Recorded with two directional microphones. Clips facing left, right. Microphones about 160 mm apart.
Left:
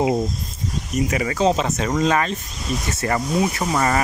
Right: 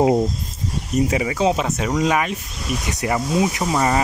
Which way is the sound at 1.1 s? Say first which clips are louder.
Left 3 dB; 10° right (ahead or behind).